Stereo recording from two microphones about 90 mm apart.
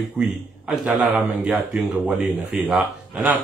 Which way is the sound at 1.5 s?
15° right (ahead or behind).